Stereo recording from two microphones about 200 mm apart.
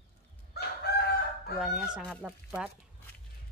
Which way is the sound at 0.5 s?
55° left (ahead or behind).